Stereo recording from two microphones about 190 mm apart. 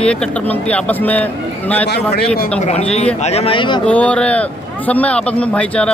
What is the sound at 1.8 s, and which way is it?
Speech, 55° left (ahead or behind).